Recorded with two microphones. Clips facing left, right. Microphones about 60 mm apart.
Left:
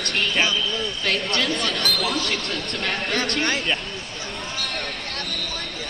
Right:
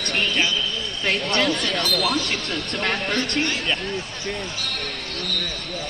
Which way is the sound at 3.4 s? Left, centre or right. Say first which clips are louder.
Even; left.